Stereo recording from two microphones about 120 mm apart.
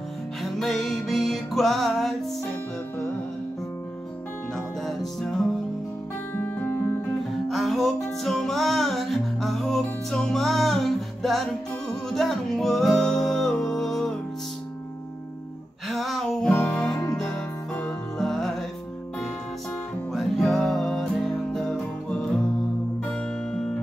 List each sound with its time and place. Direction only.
0.4 s music: centre (ahead or behind)
6.3 s music: 15° left (ahead or behind)
7.4 s music: centre (ahead or behind)
15.9 s a sound: centre (ahead or behind)
16.4 s music: 10° left (ahead or behind)
20.1 s music: centre (ahead or behind)